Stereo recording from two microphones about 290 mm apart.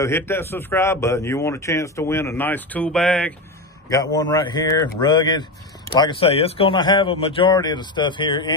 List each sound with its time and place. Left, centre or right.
0.0 s a man's voice: centre